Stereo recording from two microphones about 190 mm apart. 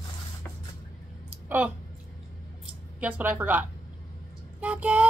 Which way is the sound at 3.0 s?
10° right (ahead or behind).